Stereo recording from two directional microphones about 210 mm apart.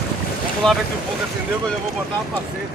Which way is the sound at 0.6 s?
5° left (ahead or behind).